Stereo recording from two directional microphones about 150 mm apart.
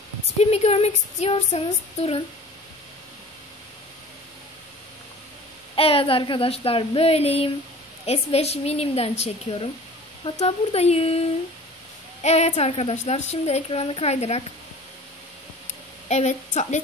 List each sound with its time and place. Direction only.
0.4 s a woman's voice: 45° left (ahead or behind)
5.8 s a woman's voice: 40° left (ahead or behind)
16.1 s a woman's voice: 50° left (ahead or behind)